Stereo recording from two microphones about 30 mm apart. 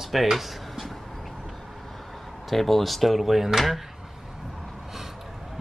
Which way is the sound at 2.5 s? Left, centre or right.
Centre.